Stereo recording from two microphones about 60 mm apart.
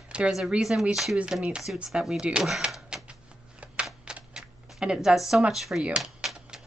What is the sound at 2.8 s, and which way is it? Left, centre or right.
Typewriter, centre.